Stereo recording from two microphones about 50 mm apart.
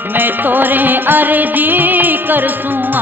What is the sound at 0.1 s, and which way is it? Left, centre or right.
Music, right.